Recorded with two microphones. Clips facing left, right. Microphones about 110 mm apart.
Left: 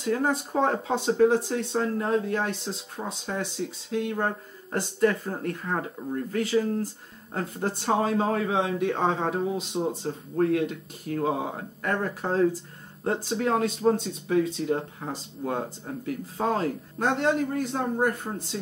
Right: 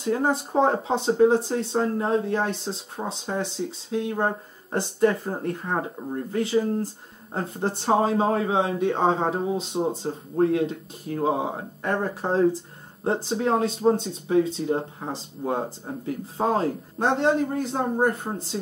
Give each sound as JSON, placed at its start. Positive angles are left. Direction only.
{"t": 0.0, "sound": "speech", "side_deg": -30}